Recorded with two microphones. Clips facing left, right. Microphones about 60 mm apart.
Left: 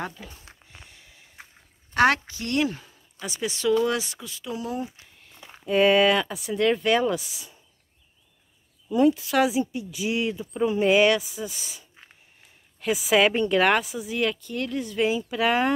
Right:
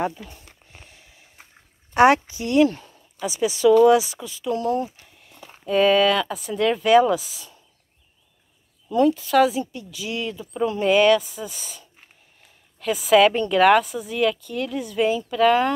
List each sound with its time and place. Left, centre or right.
0.2 s speech: centre
0.8 s a sound: centre
2.0 s a woman's voice: centre
2.6 s speech: centre
6.3 s speech: centre
8.9 s speech: centre
9.6 s speech: centre
12.8 s speech: centre